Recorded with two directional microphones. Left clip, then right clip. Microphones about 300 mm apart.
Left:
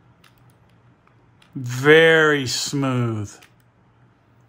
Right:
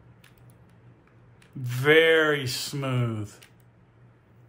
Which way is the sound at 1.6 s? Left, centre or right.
Left.